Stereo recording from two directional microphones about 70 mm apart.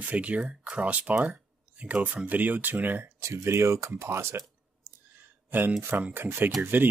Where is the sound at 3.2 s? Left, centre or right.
Right.